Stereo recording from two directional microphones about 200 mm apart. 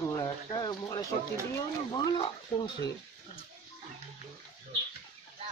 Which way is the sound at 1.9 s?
20° left (ahead or behind).